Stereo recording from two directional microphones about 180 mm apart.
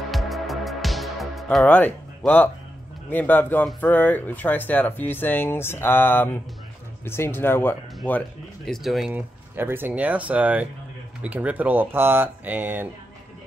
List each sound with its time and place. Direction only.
0.1 s music: centre (ahead or behind)
3.1 s speech: 10° left (ahead or behind)
8.6 s speech: centre (ahead or behind)